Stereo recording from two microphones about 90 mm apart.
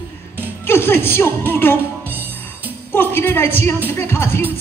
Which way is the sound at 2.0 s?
20° right (ahead or behind).